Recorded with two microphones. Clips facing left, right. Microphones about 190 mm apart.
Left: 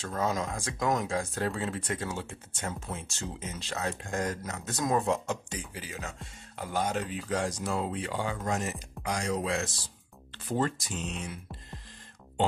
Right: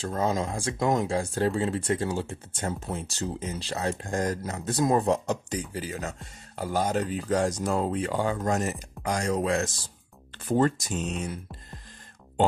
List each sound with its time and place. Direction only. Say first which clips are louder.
0.0 s speech: right 4 dB; 30° right (ahead or behind)